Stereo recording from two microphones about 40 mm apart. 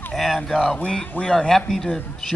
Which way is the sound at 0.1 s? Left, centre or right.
Centre.